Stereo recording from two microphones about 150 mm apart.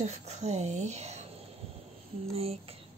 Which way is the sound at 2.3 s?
40° right (ahead or behind).